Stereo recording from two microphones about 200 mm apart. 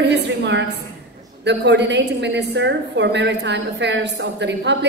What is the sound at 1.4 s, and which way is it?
A woman's voice, 60° right (ahead or behind).